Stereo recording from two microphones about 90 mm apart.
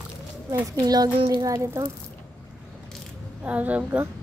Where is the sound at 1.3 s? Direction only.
40° right (ahead or behind).